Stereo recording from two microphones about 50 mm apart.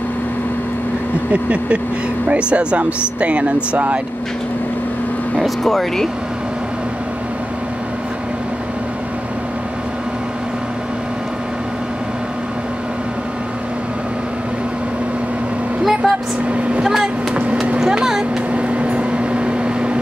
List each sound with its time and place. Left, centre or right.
1.3 s speech: right
5.6 s speech: centre
15.8 s vehicle: centre
16.4 s vehicle: right
16.8 s vehicle: centre
17.3 s vehicle: right
17.7 s vehicle: centre
18.5 s microwave oven: right